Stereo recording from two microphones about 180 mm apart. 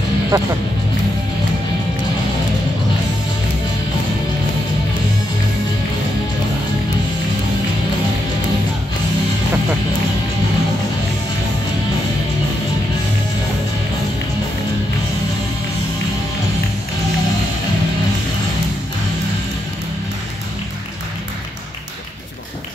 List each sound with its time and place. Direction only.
0.3 s speech: 20° right (ahead or behind)